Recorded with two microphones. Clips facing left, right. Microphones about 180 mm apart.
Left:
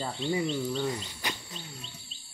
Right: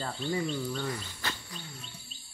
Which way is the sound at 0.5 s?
20° left (ahead or behind).